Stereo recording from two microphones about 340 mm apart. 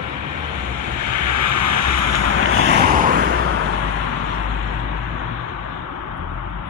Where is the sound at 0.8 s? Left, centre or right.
Right.